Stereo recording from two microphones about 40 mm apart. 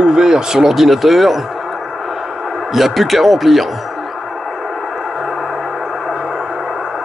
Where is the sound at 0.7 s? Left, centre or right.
Centre.